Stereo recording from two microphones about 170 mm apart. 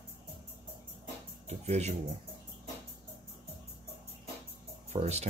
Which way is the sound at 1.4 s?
40° right (ahead or behind).